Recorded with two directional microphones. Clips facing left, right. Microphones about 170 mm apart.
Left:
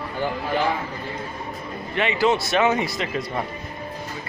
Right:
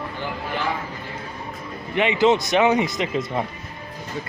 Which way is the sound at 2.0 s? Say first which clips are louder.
Right 3 dB; 20° right (ahead or behind).